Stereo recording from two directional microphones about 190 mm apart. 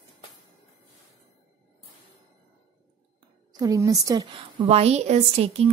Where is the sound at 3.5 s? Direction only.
20° right (ahead or behind).